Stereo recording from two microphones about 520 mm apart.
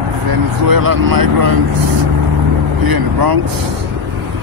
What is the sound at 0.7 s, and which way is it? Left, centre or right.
Speech, right.